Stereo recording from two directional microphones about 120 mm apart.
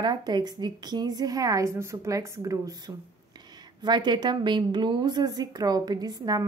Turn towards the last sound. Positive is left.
turn(degrees=-30)  # may be behind; listen again after turning